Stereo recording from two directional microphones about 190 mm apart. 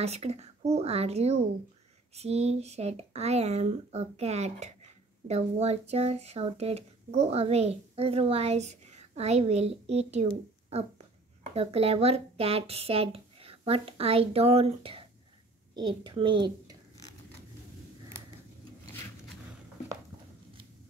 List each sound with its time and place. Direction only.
0.0 s speech: 35° right (ahead or behind)
10.7 s a sound: 30° right (ahead or behind)
11.5 s a woman's voice: 30° right (ahead or behind)